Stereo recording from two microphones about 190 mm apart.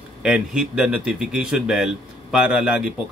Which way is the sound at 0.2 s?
5° right (ahead or behind).